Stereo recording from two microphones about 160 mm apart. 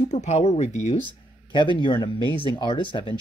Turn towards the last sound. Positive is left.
turn(degrees=30)  # may be behind; listen again after turning